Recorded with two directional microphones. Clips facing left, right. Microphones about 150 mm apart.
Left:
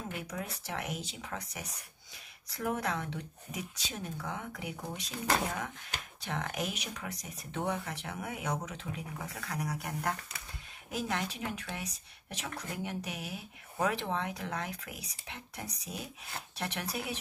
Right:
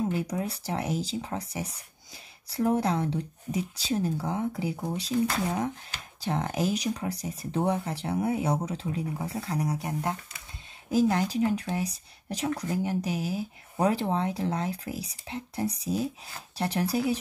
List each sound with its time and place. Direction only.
0.0 s speech: 35° right (ahead or behind)
10.9 s speech: 35° right (ahead or behind)